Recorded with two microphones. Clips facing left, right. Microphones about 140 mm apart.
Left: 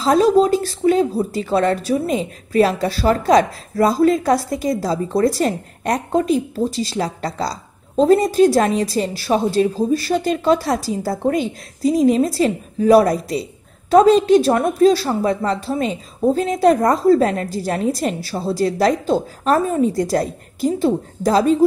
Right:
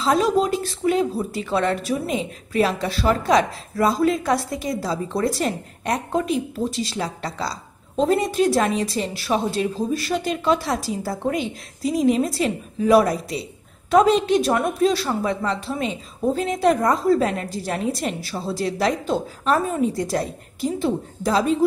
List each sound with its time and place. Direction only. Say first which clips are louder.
0.0 s a woman's voice: left 5 dB; 35° left (ahead or behind)